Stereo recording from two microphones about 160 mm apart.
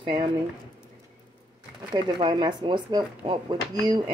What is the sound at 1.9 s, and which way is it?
Speech, 30° right (ahead or behind).